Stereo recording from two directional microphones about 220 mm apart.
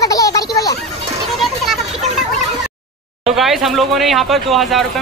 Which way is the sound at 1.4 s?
Centre (ahead or behind).